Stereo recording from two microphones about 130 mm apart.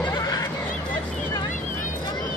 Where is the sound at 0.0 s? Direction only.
30° left (ahead or behind).